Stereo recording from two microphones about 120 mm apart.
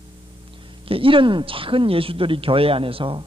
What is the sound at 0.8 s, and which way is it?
Speech, 50° right (ahead or behind).